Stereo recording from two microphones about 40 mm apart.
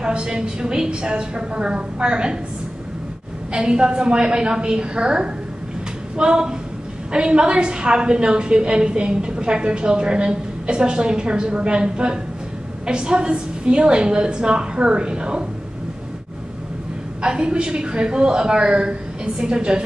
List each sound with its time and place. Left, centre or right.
0.0 s a woman's voice: right
3.5 s a woman's voice: right
17.2 s a woman's voice: right